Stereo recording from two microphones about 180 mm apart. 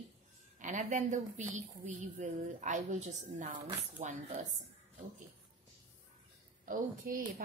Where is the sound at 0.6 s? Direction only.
45° right (ahead or behind).